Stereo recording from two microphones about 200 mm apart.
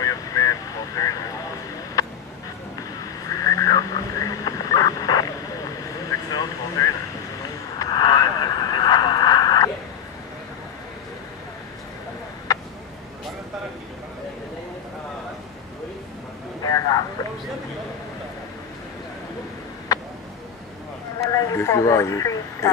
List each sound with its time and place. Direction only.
0.0 s vehicle: 15° left (ahead or behind)
3.3 s a sound: 15° left (ahead or behind)
6.0 s vehicle: 15° left (ahead or behind)
7.8 s radio: 20° left (ahead or behind)
16.6 s a sound: 20° left (ahead or behind)
21.3 s radio: 15° left (ahead or behind)